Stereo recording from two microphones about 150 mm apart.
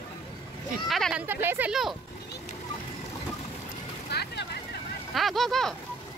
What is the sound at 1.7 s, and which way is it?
Speech, centre (ahead or behind).